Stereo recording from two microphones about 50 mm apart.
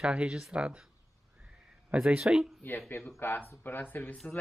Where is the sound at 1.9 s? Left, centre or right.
Centre.